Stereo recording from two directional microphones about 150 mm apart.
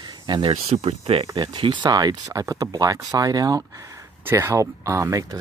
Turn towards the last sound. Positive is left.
turn(degrees=-20)  # may be behind; listen again after turning